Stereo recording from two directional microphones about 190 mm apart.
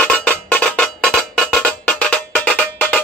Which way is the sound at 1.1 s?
Centre (ahead or behind).